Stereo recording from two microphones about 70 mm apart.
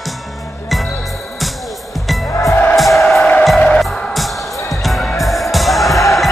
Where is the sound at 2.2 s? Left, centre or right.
Left.